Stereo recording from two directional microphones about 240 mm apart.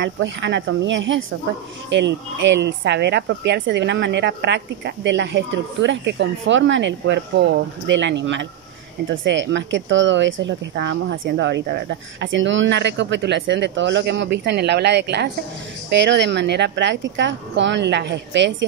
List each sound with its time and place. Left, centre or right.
0.0 s speech: right